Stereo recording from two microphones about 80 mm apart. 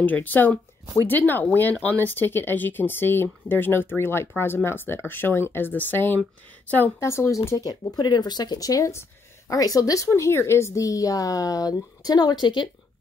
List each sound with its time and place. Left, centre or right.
0.0 s speech: left
7.0 s speech: left
7.8 s a woman's voice: left